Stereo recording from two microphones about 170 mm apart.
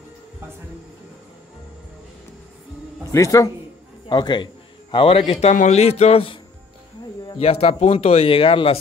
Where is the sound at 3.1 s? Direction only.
20° left (ahead or behind).